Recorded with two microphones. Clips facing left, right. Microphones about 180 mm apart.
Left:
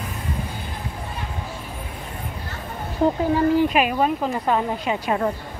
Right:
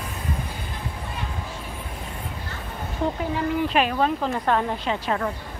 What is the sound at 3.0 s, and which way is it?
Speech, 40° left (ahead or behind).